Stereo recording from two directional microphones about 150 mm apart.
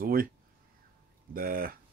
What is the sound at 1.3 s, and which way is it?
Speech, 75° right (ahead or behind).